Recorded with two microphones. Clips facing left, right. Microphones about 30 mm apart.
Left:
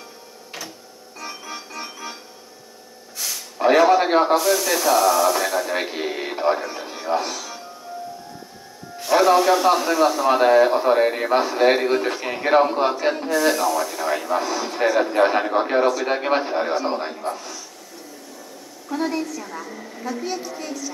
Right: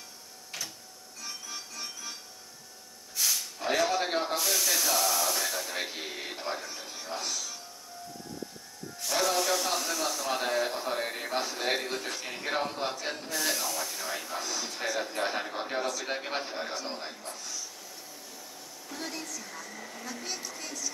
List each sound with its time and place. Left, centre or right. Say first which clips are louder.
1.2 s music: left 8 dB; left
3.2 s hiss: even; centre
3.5 s a sound: left 15 dB; left
4.4 s a man's voice: left 9 dB; centre
8.9 s a man's voice: left 13 dB; left
13.3 s a man's voice: left 12 dB; centre
18.9 s a man's voice: left 14 dB; left
19.5 s a woman's voice: left 8 dB; left
20.1 s a woman's voice: left 13 dB; centre